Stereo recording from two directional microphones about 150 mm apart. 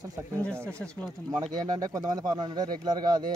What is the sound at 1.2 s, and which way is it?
Speech, 25° right (ahead or behind).